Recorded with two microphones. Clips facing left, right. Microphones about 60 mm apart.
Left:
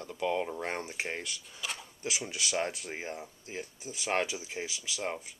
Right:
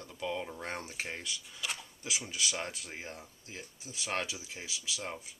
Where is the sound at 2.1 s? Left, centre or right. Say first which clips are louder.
Left 2 dB; left.